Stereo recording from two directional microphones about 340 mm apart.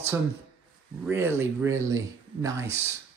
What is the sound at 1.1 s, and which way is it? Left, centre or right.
Speech, centre.